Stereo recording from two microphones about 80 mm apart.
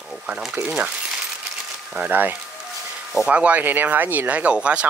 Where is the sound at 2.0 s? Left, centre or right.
Right.